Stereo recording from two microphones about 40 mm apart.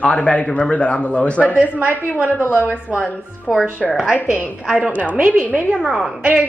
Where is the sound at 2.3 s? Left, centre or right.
Left.